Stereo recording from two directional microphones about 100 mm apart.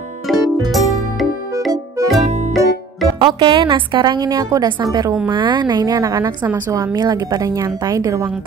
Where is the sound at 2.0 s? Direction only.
30° right (ahead or behind).